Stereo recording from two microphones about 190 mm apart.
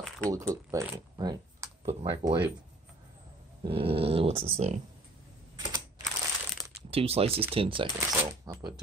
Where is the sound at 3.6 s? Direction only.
30° right (ahead or behind).